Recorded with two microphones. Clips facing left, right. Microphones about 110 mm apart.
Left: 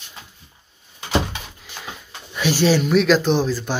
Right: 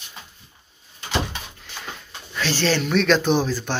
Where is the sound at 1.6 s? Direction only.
10° left (ahead or behind).